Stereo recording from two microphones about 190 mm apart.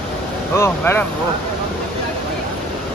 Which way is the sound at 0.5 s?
15° left (ahead or behind).